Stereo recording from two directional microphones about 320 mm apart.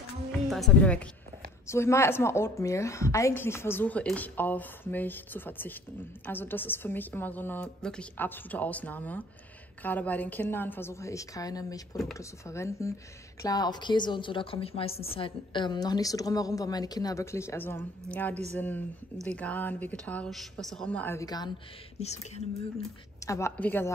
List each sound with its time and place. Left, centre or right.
0.5 s a woman's voice: centre
22.8 s a woman's voice: centre